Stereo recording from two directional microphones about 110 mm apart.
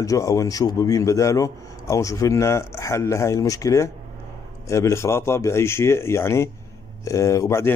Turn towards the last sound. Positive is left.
turn(degrees=25)  # may be behind; listen again after turning